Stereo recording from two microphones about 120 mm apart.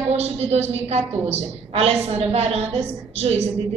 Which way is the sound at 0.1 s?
60° right (ahead or behind).